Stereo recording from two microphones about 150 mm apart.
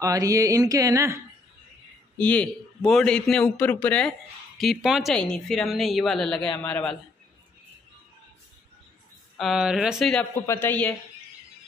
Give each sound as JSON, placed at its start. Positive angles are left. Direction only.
{"t": 0.0, "sound": "mantra", "side_deg": -20}
{"t": 2.1, "sound": "a man's voice", "side_deg": 10}
{"t": 9.4, "sound": "a woman's voice", "side_deg": -5}
{"t": 10.4, "sound": "a man's voice", "side_deg": 15}